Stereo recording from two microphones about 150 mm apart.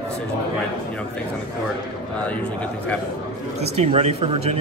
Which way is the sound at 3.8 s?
45° right (ahead or behind).